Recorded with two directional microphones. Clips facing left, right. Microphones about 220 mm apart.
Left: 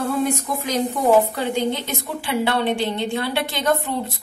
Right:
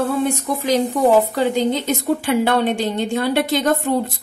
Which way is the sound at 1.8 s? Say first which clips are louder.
Right 9 dB; 45° right (ahead or behind).